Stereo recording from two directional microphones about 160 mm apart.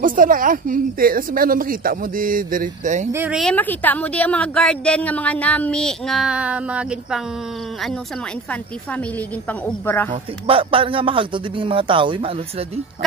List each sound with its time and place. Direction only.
0.0 s speech: 60° right (ahead or behind)
3.1 s speech: 15° right (ahead or behind)
3.3 s a woman's voice: 5° left (ahead or behind)
9.5 s a woman's voice: 10° left (ahead or behind)
10.4 s speech: 35° right (ahead or behind)